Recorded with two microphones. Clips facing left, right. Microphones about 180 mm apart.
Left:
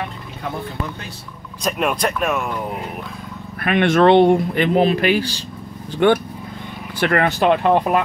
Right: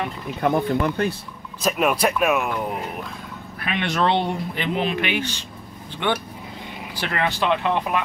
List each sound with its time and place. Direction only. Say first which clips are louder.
0.4 s speech: right 7 dB; 60° right (ahead or behind)
1.6 s speech: even; 5° right (ahead or behind)
3.6 s speech: left 9 dB; 50° left (ahead or behind)
4.8 s speech: left 7 dB; 40° left (ahead or behind)
6.0 s speech: left 9 dB; 45° left (ahead or behind)